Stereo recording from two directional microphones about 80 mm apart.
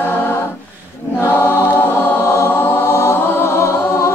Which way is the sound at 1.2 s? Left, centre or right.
Left.